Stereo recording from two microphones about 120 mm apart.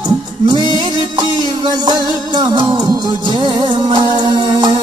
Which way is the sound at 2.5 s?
40° right (ahead or behind).